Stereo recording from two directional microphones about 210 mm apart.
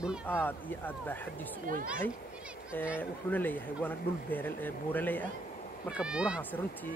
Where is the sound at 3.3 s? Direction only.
10° left (ahead or behind).